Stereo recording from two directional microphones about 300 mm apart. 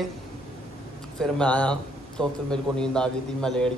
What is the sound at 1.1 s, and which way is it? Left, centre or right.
A man's voice, centre.